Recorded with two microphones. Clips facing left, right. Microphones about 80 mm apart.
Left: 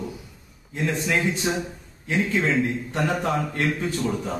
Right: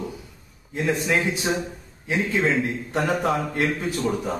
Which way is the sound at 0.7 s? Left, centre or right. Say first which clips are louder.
Right 2 dB; centre.